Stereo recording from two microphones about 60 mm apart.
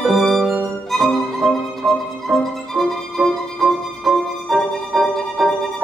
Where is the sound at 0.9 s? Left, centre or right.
Centre.